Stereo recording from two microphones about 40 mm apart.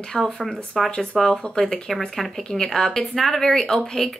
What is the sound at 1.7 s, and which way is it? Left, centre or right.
A woman's voice, centre.